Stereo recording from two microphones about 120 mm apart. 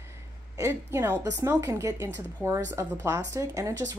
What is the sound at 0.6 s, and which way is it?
A woman's voice, 20° right (ahead or behind).